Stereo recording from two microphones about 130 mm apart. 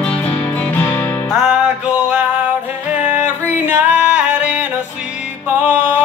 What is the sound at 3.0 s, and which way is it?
Music, 10° right (ahead or behind).